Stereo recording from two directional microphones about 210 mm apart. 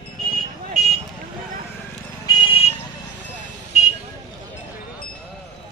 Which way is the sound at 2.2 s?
25° left (ahead or behind).